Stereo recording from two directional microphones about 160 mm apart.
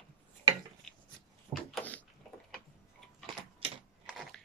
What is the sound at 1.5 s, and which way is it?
Door, 5° left (ahead or behind).